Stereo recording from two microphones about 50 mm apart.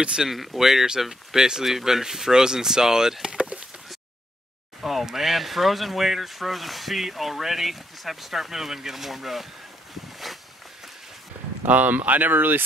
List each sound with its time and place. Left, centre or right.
0.0 s speech: centre
0.3 s speech: centre
3.3 s a sound: right
4.8 s speech: centre
11.6 s speech: right